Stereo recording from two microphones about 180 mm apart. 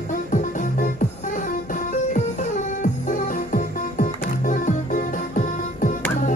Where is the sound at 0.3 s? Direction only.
45° left (ahead or behind).